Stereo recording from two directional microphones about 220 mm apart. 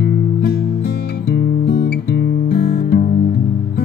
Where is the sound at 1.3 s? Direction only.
45° left (ahead or behind).